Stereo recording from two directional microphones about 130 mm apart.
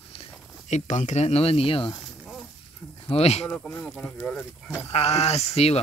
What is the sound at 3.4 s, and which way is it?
Speech, 15° left (ahead or behind).